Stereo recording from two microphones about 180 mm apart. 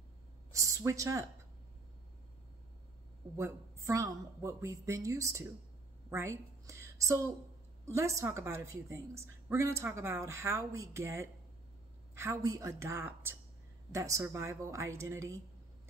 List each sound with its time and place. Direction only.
0.5 s a woman's voice: 15° right (ahead or behind)
3.3 s a woman's voice: 15° right (ahead or behind)